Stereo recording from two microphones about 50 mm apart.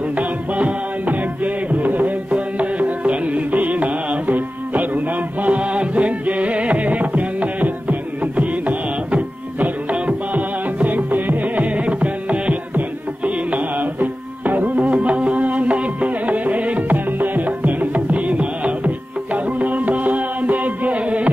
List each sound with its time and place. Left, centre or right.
0.6 s music: right